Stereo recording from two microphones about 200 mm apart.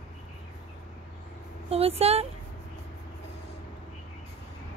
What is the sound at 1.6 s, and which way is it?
Speech, 30° right (ahead or behind).